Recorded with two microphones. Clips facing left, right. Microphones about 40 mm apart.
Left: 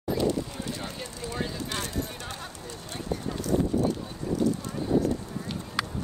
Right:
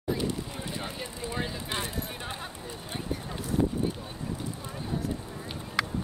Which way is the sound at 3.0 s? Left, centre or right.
Centre.